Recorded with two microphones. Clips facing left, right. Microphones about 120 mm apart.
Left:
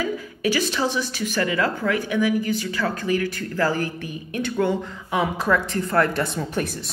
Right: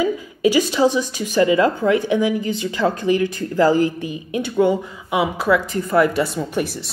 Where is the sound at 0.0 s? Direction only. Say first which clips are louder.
Right 6 dB; 15° right (ahead or behind).